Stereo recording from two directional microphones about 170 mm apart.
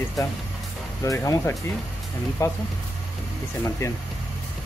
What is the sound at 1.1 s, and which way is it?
Speech, 15° left (ahead or behind).